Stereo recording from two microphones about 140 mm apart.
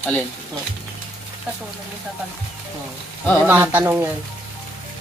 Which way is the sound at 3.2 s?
10° left (ahead or behind).